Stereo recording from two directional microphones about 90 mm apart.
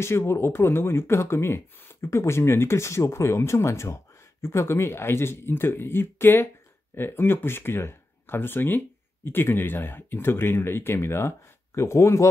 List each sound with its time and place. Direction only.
0.0 s speech: 30° left (ahead or behind)